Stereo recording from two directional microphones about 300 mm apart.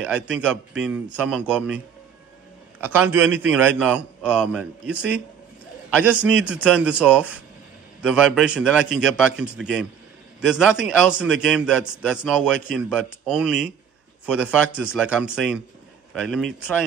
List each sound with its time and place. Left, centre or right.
0.0 s a man's voice: centre
2.8 s a man's voice: centre